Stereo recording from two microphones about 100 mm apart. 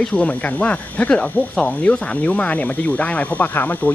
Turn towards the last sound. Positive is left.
turn(degrees=15)  # may be behind; listen again after turning